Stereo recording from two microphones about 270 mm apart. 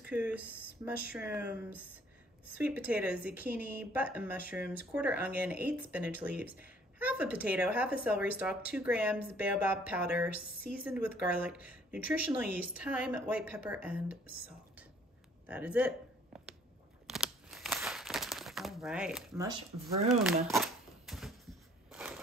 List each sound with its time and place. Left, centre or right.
0.1 s speech: centre
15.4 s speech: centre
17.1 s crumpling: centre
20.4 s a sound: centre